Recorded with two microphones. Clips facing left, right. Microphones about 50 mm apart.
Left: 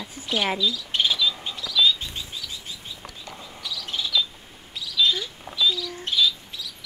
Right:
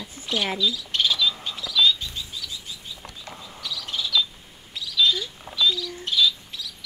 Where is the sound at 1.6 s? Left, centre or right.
Centre.